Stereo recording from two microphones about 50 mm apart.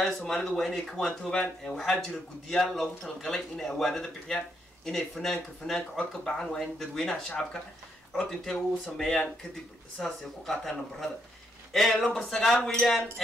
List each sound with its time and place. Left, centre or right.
0.0 s a man's voice: centre
7.1 s speech: left
8.3 s a man's voice: centre